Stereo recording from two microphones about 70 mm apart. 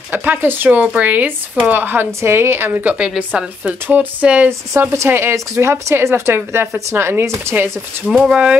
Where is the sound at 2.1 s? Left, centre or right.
Right.